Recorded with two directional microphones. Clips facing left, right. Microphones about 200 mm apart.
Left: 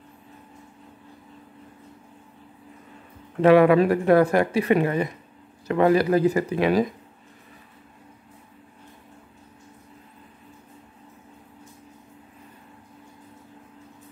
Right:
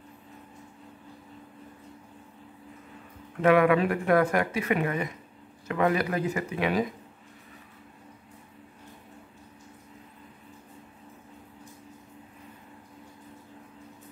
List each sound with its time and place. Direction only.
3.3 s speech: 30° left (ahead or behind)